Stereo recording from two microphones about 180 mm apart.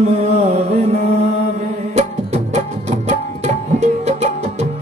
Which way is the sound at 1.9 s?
40° right (ahead or behind).